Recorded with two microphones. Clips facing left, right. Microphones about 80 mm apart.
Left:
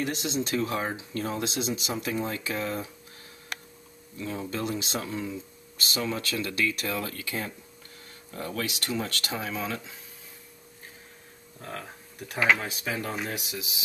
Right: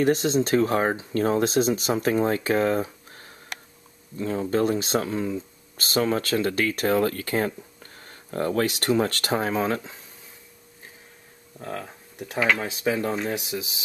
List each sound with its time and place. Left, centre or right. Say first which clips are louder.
0.0 s speech: right 9 dB; right
11.6 s speech: right 5 dB; centre; by 13.7 s right